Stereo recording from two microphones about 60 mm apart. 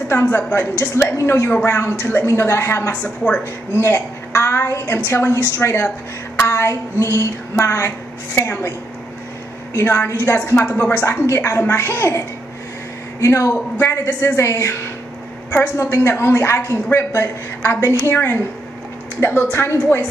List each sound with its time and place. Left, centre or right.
0.2 s a woman's voice: left
1.1 s a woman's voice: left
2.0 s a woman's voice: left
2.2 s a woman's voice: left
2.9 s a woman's voice: centre
3.7 s a woman's voice: left
9.8 s a woman's voice: left
11.2 s a woman's voice: left